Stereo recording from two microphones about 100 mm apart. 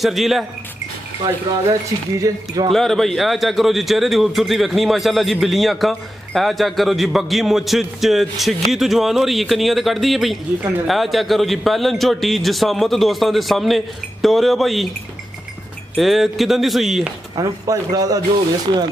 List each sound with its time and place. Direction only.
0.0 s a man's voice: centre (ahead or behind)
1.2 s speech: 35° right (ahead or behind)
2.7 s a man's voice: centre (ahead or behind)
16.0 s a man's voice: centre (ahead or behind)
17.4 s speech: 40° right (ahead or behind)